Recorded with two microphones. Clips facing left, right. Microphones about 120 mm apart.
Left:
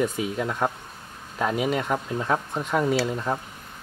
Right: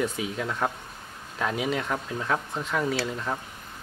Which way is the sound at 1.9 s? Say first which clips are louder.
Left 3 dB; 20° left (ahead or behind).